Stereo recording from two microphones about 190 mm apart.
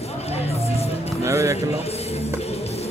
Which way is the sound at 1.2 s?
15° right (ahead or behind).